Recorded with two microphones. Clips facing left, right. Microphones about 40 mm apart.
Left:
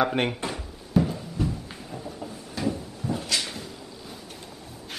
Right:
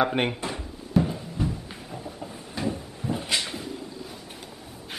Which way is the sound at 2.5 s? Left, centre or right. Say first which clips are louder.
Left 1 dB; centre.